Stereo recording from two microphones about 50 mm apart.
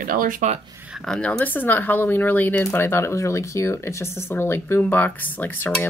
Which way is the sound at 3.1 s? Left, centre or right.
Left.